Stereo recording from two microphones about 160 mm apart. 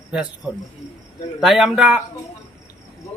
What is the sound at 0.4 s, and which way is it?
Speech, centre (ahead or behind).